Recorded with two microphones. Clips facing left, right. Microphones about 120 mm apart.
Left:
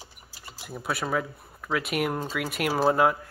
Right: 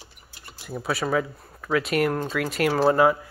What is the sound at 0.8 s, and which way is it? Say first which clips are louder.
Speech: right 4 dB; centre (ahead or behind).